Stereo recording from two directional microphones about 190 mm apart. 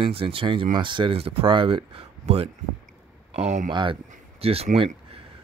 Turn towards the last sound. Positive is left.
turn(degrees=-30)  # may be behind; listen again after turning